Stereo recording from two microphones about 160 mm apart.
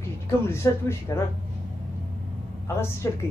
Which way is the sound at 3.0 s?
15° left (ahead or behind).